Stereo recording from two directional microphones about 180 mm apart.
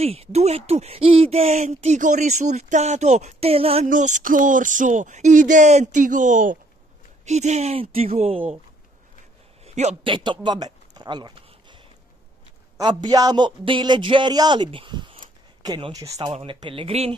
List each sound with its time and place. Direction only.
0.0 s speech: 35° right (ahead or behind)
3.8 s speech: 45° right (ahead or behind)
9.7 s a man's voice: 35° right (ahead or behind)
10.1 s a man's voice: 25° right (ahead or behind)